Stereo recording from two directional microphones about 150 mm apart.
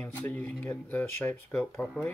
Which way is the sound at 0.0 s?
10° left (ahead or behind).